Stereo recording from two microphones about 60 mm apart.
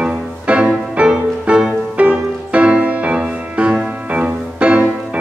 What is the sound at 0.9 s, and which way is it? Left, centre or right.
Music, centre.